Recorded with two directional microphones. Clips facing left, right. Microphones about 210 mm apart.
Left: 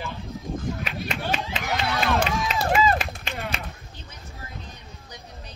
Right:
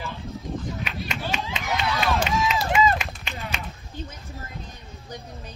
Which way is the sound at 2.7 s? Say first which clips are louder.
Left 1 dB; 35° left (ahead or behind).